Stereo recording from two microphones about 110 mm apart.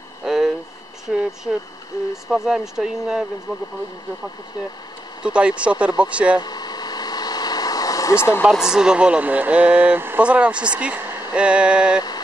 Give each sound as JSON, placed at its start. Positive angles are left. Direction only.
{"t": 0.2, "sound": "a sound", "side_deg": -5}
{"t": 2.2, "sound": "speech", "side_deg": -5}
{"t": 5.2, "sound": "speech", "side_deg": -10}
{"t": 6.4, "sound": "vehicle", "side_deg": 40}
{"t": 8.5, "sound": "speech", "side_deg": -5}